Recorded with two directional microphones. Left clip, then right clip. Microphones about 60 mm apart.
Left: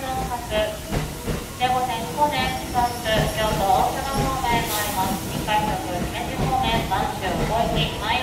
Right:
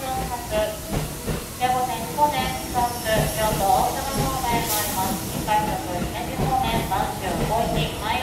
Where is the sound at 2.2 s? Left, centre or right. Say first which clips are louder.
Right 1 dB; left.